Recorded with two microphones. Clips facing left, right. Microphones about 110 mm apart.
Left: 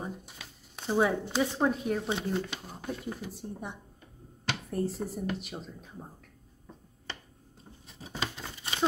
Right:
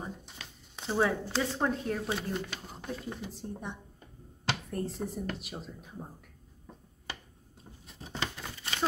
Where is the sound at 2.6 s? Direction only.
5° left (ahead or behind).